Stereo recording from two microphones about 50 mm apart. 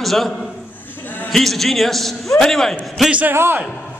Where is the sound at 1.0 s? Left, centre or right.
Left.